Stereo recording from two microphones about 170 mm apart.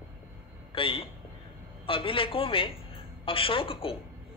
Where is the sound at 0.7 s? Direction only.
30° left (ahead or behind).